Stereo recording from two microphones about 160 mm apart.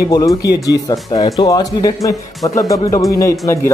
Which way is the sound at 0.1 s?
25° left (ahead or behind).